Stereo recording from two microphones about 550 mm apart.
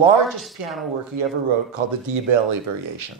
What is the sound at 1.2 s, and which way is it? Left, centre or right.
A man's voice, right.